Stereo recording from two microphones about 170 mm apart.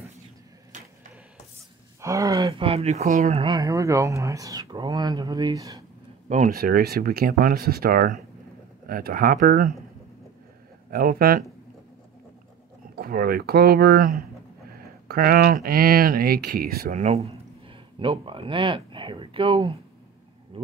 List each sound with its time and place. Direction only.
2.0 s speech: 20° right (ahead or behind)
2.6 s speech: 40° right (ahead or behind)
3.4 s speech: 20° right (ahead or behind)
6.2 s speech: 45° right (ahead or behind)
10.9 s speech: 60° right (ahead or behind)
12.9 s speech: 65° right (ahead or behind); by 20.7 s 30° right (ahead or behind)